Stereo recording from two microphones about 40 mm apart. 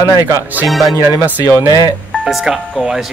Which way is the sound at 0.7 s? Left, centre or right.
Centre.